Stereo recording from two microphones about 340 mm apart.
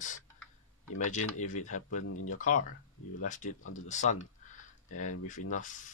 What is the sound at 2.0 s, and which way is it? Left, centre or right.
Speech, left.